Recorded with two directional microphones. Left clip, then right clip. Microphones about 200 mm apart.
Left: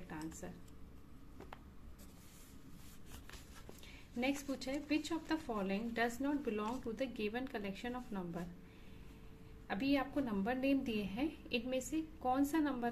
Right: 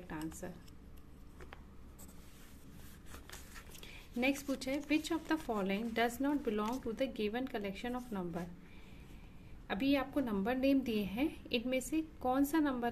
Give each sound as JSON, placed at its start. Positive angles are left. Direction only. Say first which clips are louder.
{"t": 0.1, "sound": "speech", "louder": "right 3 dB", "side_deg": -25}
{"t": 3.8, "sound": "speech", "louder": "right 4 dB", "side_deg": -25}
{"t": 9.7, "sound": "speech", "louder": "right 2 dB", "side_deg": -20}